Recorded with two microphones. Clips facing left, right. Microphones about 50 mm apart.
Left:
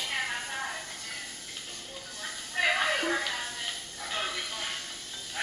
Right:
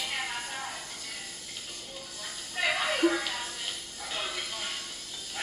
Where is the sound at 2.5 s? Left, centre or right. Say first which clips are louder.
Left 2 dB; left.